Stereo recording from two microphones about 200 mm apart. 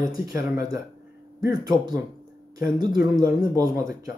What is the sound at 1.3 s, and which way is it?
Speech, 20° right (ahead or behind).